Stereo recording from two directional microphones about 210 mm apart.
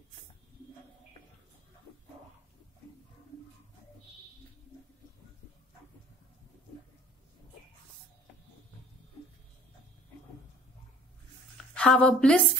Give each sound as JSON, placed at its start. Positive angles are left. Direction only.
{"t": 11.5, "sound": "speech", "side_deg": 5}